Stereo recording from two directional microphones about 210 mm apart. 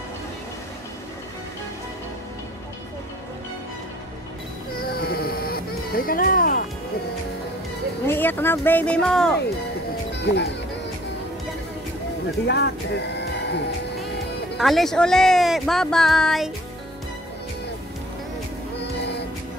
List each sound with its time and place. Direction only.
4.7 s baby cry: 50° left (ahead or behind)
8.1 s speech: 10° left (ahead or behind)
10.1 s speech: 55° left (ahead or behind)
12.4 s speech: 50° left (ahead or behind)
14.6 s speech: centre (ahead or behind)
18.9 s music: 55° left (ahead or behind)